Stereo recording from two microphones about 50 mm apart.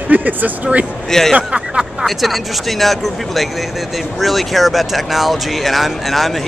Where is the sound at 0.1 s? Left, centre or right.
Right.